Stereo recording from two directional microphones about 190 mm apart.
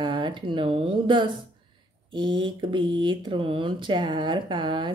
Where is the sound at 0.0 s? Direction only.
25° right (ahead or behind).